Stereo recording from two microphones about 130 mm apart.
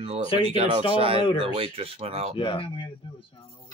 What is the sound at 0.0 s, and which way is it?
Speech, 50° right (ahead or behind).